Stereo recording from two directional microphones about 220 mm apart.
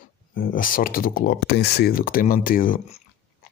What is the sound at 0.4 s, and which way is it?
Speech, 40° left (ahead or behind).